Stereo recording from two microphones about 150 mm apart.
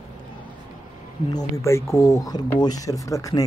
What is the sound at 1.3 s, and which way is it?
Speech, 25° left (ahead or behind).